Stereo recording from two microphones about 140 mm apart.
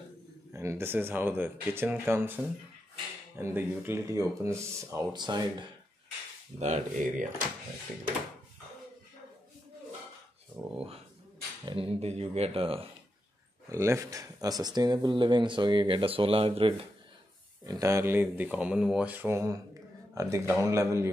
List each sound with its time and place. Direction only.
0.5 s speech: 20° right (ahead or behind)
6.6 s speech: 60° right (ahead or behind)
11.6 s speech: 40° right (ahead or behind)
13.7 s speech: 20° right (ahead or behind); by 16.8 s 40° right (ahead or behind)
17.6 s speech: 20° right (ahead or behind)